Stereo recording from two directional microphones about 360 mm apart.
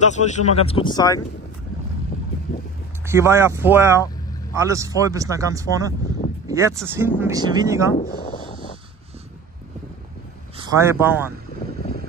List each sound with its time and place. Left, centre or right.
0.0 s speech: centre
3.1 s speech: centre
10.5 s a man's voice: centre